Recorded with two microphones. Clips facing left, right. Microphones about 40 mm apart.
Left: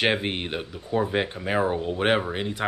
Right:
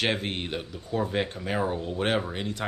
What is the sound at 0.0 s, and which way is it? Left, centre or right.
Speech, centre.